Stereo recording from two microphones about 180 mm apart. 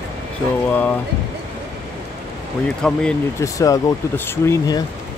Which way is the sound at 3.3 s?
20° left (ahead or behind).